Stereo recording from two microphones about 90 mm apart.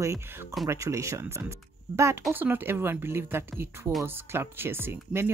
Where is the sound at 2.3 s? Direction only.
25° right (ahead or behind).